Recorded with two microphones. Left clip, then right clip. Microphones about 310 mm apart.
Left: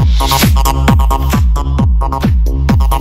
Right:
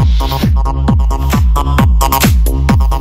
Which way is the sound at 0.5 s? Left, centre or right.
Left.